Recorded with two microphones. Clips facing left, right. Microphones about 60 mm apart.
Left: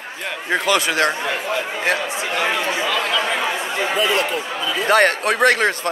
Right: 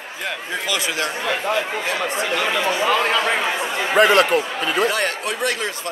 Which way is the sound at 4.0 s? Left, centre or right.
Right.